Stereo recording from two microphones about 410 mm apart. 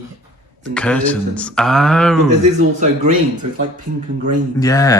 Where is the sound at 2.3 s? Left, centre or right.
Centre.